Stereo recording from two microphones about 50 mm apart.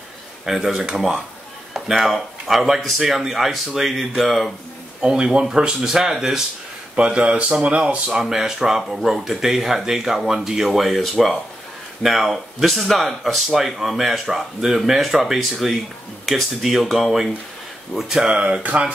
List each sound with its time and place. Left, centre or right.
0.5 s speech: centre
5.0 s speech: centre
7.0 s speech: right
8.1 s speech: centre
18.2 s speech: right